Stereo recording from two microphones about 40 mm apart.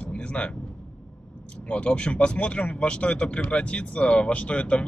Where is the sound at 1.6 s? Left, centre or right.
Left.